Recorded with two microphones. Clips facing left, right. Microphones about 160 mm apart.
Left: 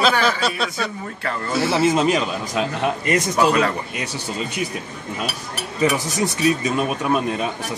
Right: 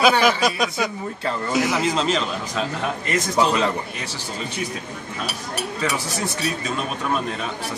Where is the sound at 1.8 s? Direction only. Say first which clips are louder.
Left 4 dB; 15° left (ahead or behind).